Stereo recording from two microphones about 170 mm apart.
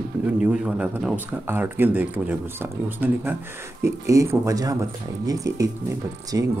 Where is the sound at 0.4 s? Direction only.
5° right (ahead or behind).